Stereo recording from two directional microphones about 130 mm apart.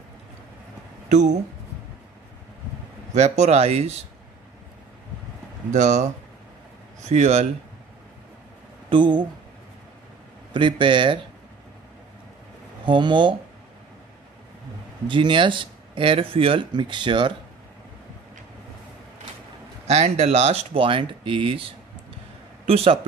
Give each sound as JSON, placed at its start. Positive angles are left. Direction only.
{"t": 3.2, "sound": "speech", "side_deg": -60}
{"t": 5.7, "sound": "speech", "side_deg": -70}
{"t": 7.0, "sound": "speech", "side_deg": -60}
{"t": 8.9, "sound": "speech", "side_deg": -40}
{"t": 10.5, "sound": "speech", "side_deg": -40}
{"t": 12.8, "sound": "speech", "side_deg": -40}
{"t": 15.0, "sound": "speech", "side_deg": -40}
{"t": 19.9, "sound": "speech", "side_deg": -55}